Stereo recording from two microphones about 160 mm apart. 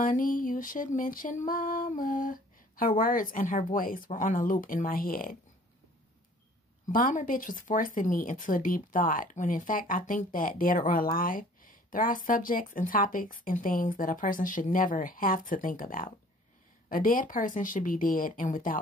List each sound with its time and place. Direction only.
0.0 s speech: 60° left (ahead or behind)
6.9 s speech: 55° left (ahead or behind)